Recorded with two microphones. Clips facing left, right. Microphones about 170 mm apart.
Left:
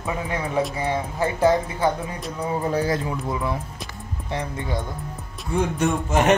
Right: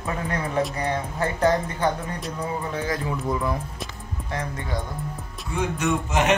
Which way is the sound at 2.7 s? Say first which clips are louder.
Left 7 dB; 35° left (ahead or behind).